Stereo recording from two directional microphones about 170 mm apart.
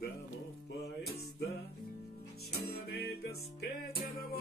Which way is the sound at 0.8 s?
65° left (ahead or behind).